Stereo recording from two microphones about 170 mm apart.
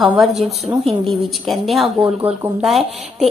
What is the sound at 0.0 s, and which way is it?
A woman's voice, centre (ahead or behind).